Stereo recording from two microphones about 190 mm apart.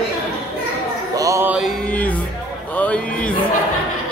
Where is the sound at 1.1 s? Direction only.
15° right (ahead or behind).